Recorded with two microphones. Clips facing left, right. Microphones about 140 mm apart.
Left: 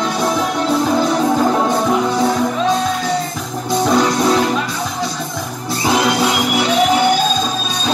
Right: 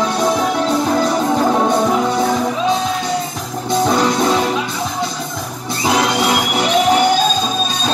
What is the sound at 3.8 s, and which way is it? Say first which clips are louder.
Music: left 1 dB; centre (ahead or behind).